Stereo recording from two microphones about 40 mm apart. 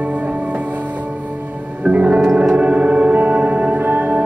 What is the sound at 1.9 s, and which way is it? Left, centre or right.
Music, right.